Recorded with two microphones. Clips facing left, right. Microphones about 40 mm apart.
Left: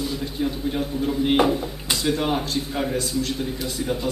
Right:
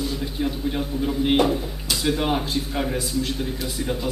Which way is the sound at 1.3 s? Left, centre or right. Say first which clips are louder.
Left 1 dB; centre.